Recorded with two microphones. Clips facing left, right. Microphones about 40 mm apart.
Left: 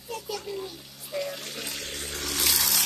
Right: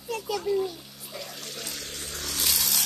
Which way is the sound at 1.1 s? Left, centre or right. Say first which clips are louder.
Left 6 dB; centre.